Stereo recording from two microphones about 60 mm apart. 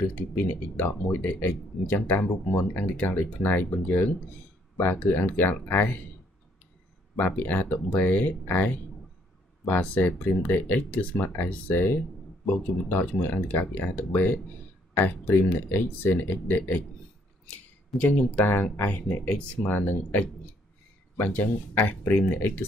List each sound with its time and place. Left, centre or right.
0.1 s speech: left
5.1 s speech: left
7.2 s speech: left
17.9 s speech: left